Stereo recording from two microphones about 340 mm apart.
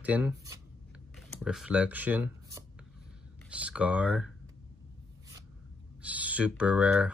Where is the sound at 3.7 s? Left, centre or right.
Centre.